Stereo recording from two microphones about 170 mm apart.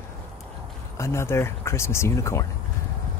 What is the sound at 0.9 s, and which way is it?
Speech, 15° left (ahead or behind).